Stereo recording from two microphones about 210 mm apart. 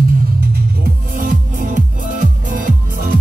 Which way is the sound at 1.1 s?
40° right (ahead or behind).